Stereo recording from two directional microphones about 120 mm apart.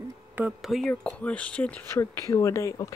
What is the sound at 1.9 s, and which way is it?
Speech, 25° left (ahead or behind).